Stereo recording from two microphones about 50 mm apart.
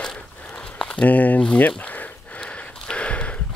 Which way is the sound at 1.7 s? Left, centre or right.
Left.